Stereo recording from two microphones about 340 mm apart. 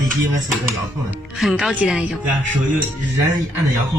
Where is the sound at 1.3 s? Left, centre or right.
Centre.